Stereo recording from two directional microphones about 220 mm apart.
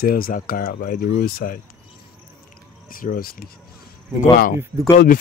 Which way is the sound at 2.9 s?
40° left (ahead or behind).